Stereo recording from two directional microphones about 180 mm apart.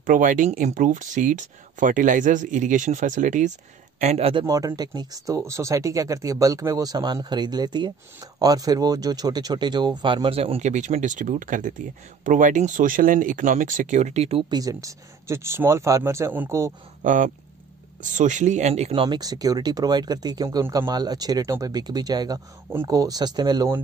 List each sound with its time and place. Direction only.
0.0 s a man's voice: 50° right (ahead or behind); by 4.5 s 30° right (ahead or behind)
4.5 s speech: 20° right (ahead or behind); by 14.4 s 35° right (ahead or behind)
14.5 s speech: 20° right (ahead or behind)
17.0 s speech: 45° right (ahead or behind); by 23.8 s 20° right (ahead or behind)